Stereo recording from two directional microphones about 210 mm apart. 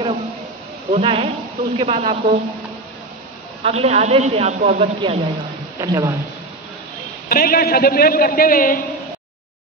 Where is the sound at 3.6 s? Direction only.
30° right (ahead or behind).